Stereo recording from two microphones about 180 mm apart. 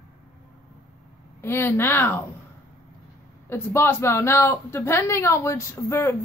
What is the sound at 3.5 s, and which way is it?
A woman's voice, 15° left (ahead or behind).